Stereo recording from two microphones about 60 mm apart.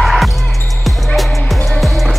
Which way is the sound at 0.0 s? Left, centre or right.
Centre.